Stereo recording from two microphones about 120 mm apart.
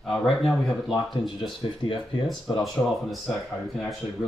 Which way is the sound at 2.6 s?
Centre (ahead or behind).